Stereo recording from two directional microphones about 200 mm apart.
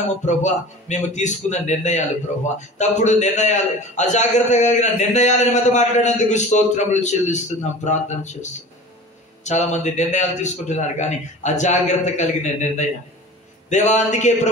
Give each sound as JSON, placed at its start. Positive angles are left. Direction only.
{"t": 0.2, "sound": "a man's voice", "side_deg": 35}